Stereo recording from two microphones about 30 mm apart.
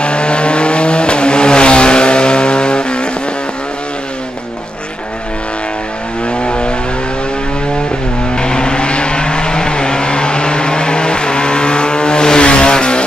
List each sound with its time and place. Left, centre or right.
0.0 s vehicle: left
6.2 s vehicle: left
8.4 s vehicle: left